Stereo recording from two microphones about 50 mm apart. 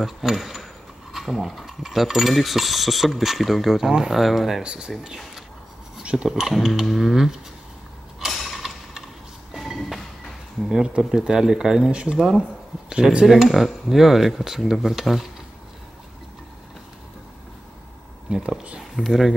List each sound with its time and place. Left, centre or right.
0.0 s speech: centre
4.6 s speech: centre
8.2 s mechanisms: centre
9.6 s a sound: centre
11.0 s speech: centre
11.9 s speech: centre
18.3 s speech: centre
18.8 s speech: centre